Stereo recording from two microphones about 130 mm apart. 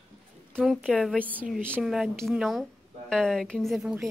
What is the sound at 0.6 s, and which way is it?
A woman's voice, 5° right (ahead or behind).